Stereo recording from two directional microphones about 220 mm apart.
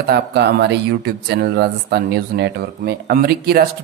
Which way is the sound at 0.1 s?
50° right (ahead or behind).